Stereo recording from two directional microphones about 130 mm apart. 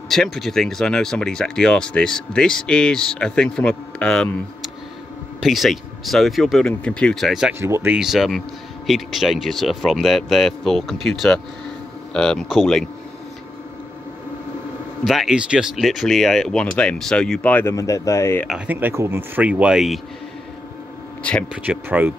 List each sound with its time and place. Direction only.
0.1 s speech: centre (ahead or behind)
7.6 s speech: 20° right (ahead or behind)
7.9 s speech: 5° right (ahead or behind)
15.0 s speech: centre (ahead or behind)
17.7 s speech: 25° left (ahead or behind)
18.7 s speech: 15° right (ahead or behind)
21.2 s speech: 10° left (ahead or behind)
21.6 s speech: 15° right (ahead or behind)